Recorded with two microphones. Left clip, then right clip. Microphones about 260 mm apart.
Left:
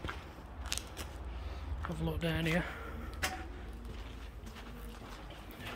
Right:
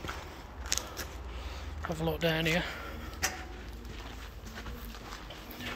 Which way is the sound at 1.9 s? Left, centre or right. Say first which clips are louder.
Right 7 dB; centre.